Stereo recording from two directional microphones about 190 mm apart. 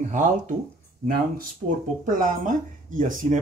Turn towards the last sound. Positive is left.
turn(degrees=-45)  # may be behind; listen again after turning